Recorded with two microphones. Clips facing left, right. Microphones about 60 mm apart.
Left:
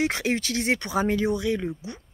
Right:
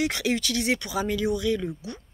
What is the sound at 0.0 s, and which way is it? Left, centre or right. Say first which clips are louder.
Speech: left 1 dB; left.